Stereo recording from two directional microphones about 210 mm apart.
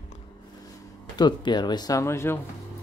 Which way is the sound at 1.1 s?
20° left (ahead or behind).